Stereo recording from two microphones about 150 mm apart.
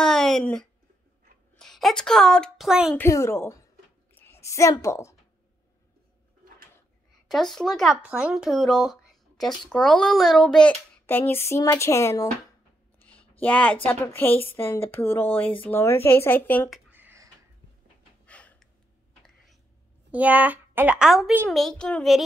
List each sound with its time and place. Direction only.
0.0 s a sound: 5° left (ahead or behind)
1.6 s a woman's voice: centre (ahead or behind)
3.0 s a woman's voice: 20° left (ahead or behind)
7.2 s speech: centre (ahead or behind); by 12.3 s 20° left (ahead or behind)
13.4 s speech: 10° left (ahead or behind)
16.9 s a sound: 15° right (ahead or behind)
18.2 s gasp: 10° left (ahead or behind)
20.1 s a woman's voice: 10° right (ahead or behind)